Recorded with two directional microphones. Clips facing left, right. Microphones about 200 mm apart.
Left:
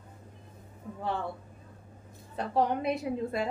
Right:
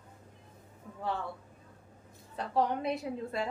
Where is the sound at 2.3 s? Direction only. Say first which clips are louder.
Left 2 dB; 15° left (ahead or behind).